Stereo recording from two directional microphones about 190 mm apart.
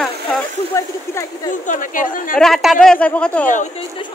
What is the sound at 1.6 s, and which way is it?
Speech, 45° left (ahead or behind).